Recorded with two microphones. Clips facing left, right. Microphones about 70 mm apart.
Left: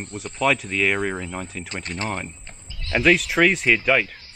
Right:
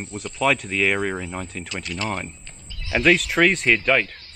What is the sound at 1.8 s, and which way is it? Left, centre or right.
Speech, left.